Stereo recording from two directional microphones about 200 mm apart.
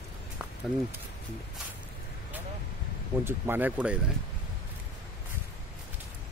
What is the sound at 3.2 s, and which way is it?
Speech, 10° right (ahead or behind).